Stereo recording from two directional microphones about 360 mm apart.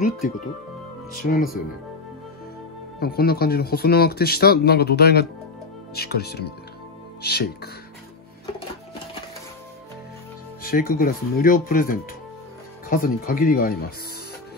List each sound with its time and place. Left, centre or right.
1.1 s speech: left
3.0 s speech: left
10.6 s speech: left